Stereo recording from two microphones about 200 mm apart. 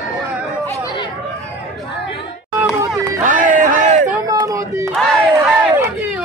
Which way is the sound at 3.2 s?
40° right (ahead or behind).